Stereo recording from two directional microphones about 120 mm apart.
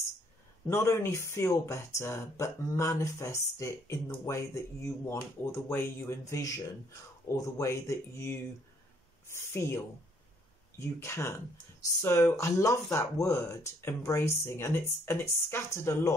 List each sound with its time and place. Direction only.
0.7 s speech: 20° left (ahead or behind)